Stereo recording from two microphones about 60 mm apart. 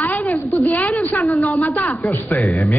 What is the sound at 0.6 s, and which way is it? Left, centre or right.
Speech, left.